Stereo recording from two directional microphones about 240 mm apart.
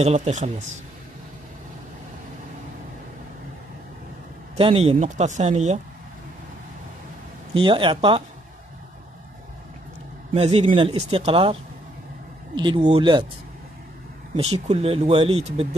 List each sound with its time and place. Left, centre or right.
0.0 s speech: right
4.6 s speech: right
7.5 s speech: right
10.3 s speech: right
12.5 s speech: right
14.3 s speech: right